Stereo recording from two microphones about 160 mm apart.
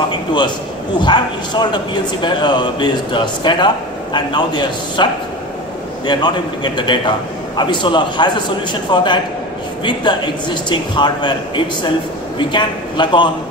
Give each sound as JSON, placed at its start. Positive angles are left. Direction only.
{"t": 0.9, "sound": "a man's voice", "side_deg": 30}